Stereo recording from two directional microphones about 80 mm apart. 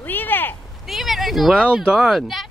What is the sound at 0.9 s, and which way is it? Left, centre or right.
Speech, centre.